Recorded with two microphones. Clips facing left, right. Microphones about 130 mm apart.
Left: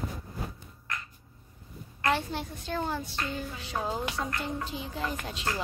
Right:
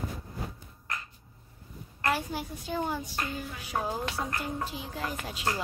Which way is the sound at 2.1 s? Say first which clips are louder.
Left 1 dB; 5° right (ahead or behind).